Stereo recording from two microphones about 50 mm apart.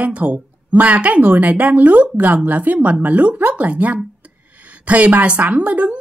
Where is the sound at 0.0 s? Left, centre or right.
Right.